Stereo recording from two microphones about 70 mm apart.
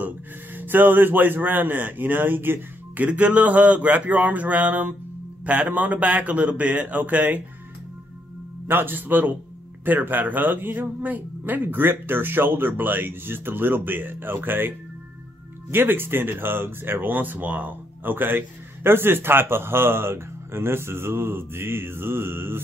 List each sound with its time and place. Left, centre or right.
0.6 s speech: right
3.1 s speech: centre
8.6 s speech: right
15.7 s speech: right